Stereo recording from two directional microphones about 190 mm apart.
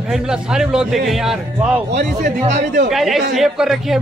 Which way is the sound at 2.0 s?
40° right (ahead or behind).